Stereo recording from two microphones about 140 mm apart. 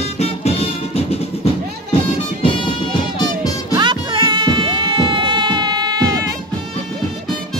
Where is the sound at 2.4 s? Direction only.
35° left (ahead or behind).